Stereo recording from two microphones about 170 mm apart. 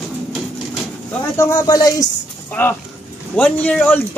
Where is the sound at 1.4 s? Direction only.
20° left (ahead or behind).